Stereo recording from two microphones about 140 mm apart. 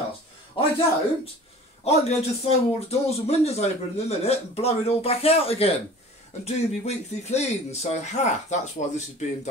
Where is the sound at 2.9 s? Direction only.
50° left (ahead or behind).